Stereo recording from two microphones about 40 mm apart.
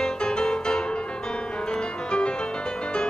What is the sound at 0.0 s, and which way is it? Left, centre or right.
Music, left.